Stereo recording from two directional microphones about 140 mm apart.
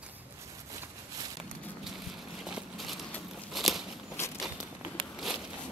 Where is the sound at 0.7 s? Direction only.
25° right (ahead or behind).